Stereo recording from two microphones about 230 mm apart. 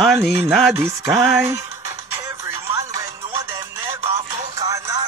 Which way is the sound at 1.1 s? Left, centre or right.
Centre.